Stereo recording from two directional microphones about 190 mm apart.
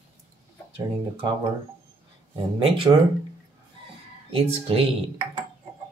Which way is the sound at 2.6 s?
30° right (ahead or behind).